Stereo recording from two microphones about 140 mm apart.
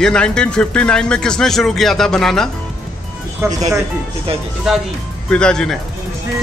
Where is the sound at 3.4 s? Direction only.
20° right (ahead or behind).